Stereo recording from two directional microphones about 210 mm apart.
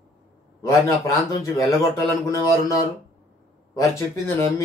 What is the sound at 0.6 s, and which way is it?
Speech, 15° left (ahead or behind).